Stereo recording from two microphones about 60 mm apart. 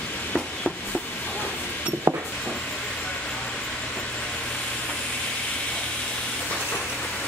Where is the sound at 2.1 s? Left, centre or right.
Right.